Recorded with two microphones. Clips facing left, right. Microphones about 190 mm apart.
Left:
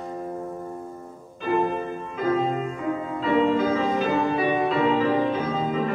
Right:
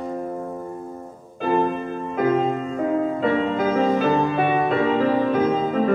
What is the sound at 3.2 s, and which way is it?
Music, 55° right (ahead or behind).